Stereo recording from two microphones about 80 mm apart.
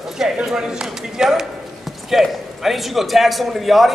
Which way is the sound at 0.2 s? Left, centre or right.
Centre.